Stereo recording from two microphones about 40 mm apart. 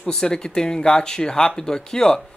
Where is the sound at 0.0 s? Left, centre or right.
Centre.